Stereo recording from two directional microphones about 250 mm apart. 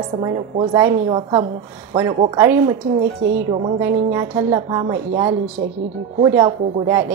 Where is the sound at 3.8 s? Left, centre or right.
Centre.